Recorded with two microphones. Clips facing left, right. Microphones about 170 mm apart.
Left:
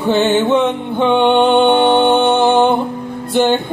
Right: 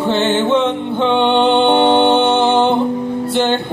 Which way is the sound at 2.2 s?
15° left (ahead or behind).